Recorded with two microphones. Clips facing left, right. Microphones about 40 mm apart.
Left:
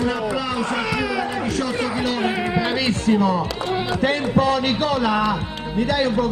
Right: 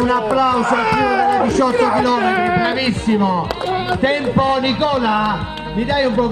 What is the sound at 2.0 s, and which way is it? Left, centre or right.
A man's voice, centre.